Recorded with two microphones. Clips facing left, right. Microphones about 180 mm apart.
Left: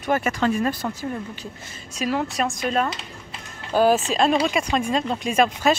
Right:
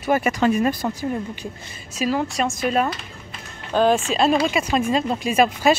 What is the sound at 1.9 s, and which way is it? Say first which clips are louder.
Speech: right 2 dB; centre (ahead or behind).